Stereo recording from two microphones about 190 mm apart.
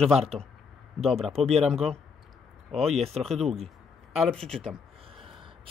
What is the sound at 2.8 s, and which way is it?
Speech, 35° right (ahead or behind).